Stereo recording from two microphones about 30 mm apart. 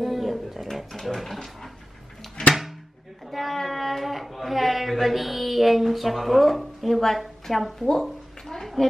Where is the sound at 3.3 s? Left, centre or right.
Centre.